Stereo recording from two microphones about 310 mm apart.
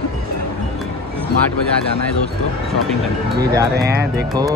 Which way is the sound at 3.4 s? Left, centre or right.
Centre.